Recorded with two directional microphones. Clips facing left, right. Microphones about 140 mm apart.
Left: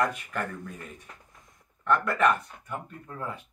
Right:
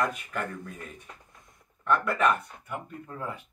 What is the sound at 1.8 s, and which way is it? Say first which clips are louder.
Speech: left 1 dB; 5° right (ahead or behind).